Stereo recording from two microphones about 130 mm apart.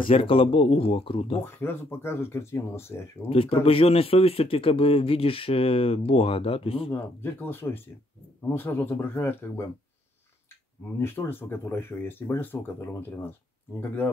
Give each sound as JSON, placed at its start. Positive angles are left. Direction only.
{"t": 0.1, "sound": "speech", "side_deg": 45}
{"t": 1.4, "sound": "speech", "side_deg": 20}
{"t": 3.3, "sound": "speech", "side_deg": 45}
{"t": 6.9, "sound": "speech", "side_deg": 15}
{"t": 11.0, "sound": "speech", "side_deg": 20}